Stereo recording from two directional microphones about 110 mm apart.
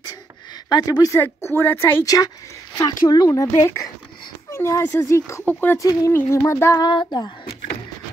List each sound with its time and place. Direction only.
0.7 s speech: 40° left (ahead or behind)
1.2 s speech: 20° left (ahead or behind)
2.0 s speech: 35° left (ahead or behind)
5.4 s speech: 15° left (ahead or behind)
5.8 s speech: 30° left (ahead or behind)
6.8 s a sound: 45° left (ahead or behind)